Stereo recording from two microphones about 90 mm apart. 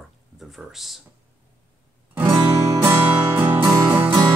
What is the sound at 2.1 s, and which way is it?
Music, 20° right (ahead or behind).